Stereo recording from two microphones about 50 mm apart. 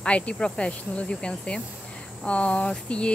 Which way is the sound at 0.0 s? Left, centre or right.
Left.